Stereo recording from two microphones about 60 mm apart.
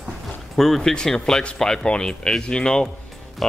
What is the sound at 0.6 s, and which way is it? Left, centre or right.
Speech, centre.